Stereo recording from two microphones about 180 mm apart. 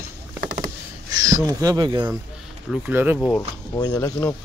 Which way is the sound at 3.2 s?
5° left (ahead or behind).